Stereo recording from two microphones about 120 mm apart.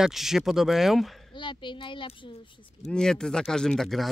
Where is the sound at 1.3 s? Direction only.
40° left (ahead or behind).